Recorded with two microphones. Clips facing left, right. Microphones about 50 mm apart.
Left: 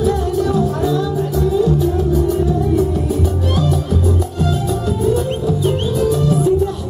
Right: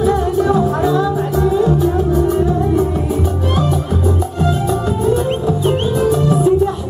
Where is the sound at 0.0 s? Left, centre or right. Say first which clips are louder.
Right 2 dB; right.